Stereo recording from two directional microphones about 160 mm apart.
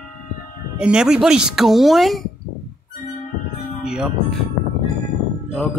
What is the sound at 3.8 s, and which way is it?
Music, 5° right (ahead or behind).